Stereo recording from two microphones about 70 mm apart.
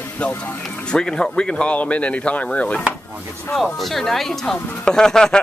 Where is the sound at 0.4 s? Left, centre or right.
Centre.